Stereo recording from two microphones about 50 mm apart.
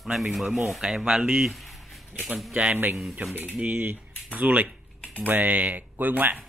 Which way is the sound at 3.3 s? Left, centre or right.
Right.